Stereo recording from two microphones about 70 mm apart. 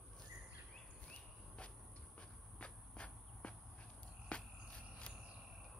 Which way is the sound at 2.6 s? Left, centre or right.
Centre.